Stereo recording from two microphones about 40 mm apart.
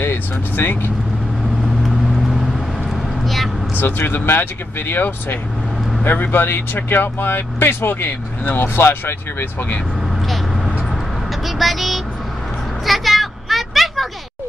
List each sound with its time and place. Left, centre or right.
0.6 s speech: left
1.8 s vehicle: centre
3.8 s speech: left
11.4 s vehicle: centre
12.8 s a sound: centre